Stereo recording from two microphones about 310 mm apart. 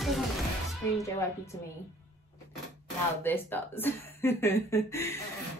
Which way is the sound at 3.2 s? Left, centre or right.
Centre.